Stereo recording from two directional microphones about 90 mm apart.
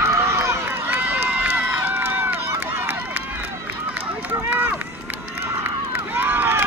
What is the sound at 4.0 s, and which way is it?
Run, 20° right (ahead or behind).